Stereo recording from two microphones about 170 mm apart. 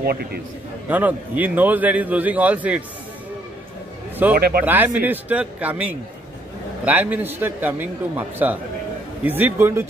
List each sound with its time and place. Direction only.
0.0 s a man's voice: 65° right (ahead or behind)
0.8 s a man's voice: 10° right (ahead or behind)
4.4 s speech: 65° right (ahead or behind)
4.6 s a man's voice: 10° right (ahead or behind)